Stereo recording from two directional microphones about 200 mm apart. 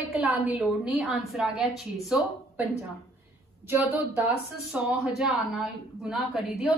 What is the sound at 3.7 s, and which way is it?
A woman's voice, 10° right (ahead or behind).